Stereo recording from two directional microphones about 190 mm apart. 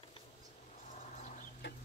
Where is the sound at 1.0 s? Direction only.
40° left (ahead or behind).